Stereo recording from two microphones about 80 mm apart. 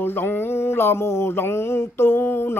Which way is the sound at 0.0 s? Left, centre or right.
Left.